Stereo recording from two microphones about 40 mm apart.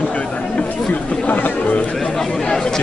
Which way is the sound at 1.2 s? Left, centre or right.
Left.